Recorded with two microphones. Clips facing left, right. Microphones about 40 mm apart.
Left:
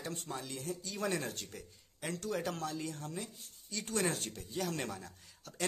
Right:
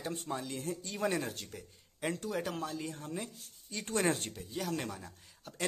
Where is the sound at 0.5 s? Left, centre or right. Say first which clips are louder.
Right 2 dB; right.